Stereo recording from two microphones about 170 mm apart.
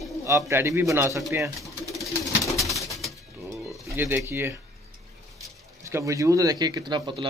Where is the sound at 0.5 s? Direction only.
15° right (ahead or behind).